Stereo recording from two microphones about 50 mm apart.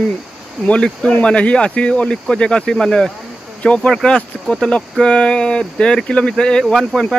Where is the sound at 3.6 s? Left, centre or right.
Left.